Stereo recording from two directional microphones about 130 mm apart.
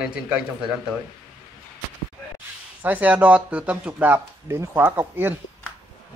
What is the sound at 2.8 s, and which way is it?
Speech, 10° right (ahead or behind).